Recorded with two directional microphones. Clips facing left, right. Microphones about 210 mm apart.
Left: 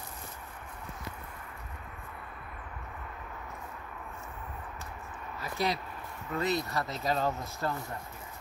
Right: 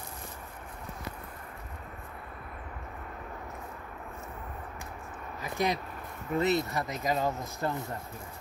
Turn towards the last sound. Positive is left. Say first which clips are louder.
# right 2 dB
turn(degrees=-20)  # may be behind; listen again after turning